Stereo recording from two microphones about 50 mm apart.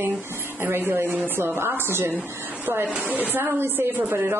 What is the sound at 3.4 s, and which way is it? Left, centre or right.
Speech, right.